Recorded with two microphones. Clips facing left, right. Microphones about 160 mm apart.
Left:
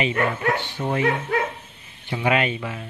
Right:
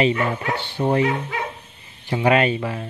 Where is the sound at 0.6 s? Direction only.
30° right (ahead or behind).